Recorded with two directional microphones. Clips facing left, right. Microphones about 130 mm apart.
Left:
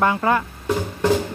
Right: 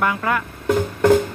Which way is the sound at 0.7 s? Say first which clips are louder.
Right 5 dB; 55° right (ahead or behind).